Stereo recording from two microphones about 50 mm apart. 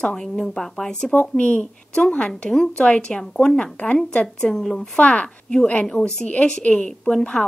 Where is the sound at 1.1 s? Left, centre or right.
Left; by 4.9 s centre.